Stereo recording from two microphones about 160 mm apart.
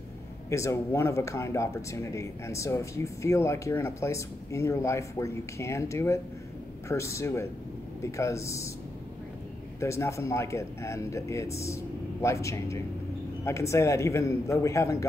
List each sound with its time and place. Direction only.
0.5 s speech: 20° left (ahead or behind)
9.8 s speech: 20° left (ahead or behind)